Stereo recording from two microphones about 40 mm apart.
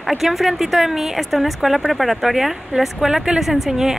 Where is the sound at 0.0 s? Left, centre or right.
Centre.